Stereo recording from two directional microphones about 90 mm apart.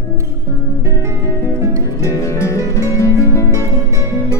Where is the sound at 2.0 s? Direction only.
35° left (ahead or behind).